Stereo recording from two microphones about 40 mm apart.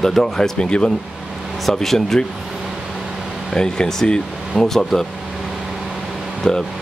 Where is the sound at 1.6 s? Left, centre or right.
Centre.